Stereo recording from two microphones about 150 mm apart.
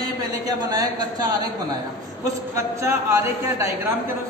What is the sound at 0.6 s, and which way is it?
Speech, 25° right (ahead or behind).